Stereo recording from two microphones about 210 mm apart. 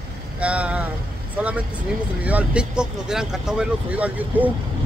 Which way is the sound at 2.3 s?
5° right (ahead or behind).